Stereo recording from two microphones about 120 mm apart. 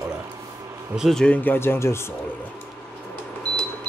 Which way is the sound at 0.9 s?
Centre (ahead or behind).